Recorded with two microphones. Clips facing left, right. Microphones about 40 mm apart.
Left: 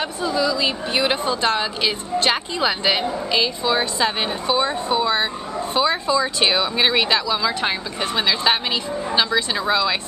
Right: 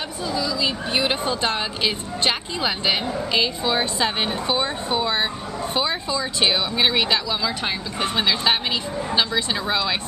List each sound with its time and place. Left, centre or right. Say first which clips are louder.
0.2 s speech: left 3 dB; centre
0.9 s a woman's voice: left 2 dB; centre